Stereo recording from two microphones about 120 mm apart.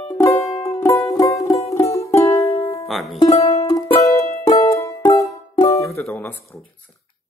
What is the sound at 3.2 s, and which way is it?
Music, 30° left (ahead or behind).